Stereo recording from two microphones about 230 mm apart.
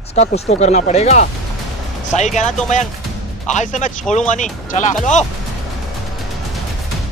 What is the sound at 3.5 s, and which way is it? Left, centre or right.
Speech, left.